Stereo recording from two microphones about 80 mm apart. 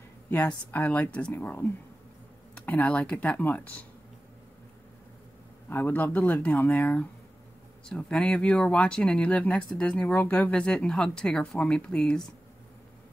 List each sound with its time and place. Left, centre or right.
0.7 s speech: left
5.7 s speech: left; by 12.3 s centre